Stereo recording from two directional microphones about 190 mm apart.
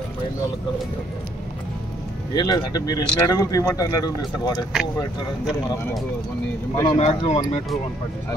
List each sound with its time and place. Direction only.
2.3 s speech: 20° left (ahead or behind)
6.7 s speech: 20° left (ahead or behind)
7.0 s speech: 35° left (ahead or behind)